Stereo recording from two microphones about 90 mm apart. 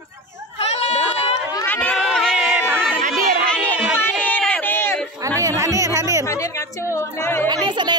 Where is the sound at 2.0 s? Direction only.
5° left (ahead or behind).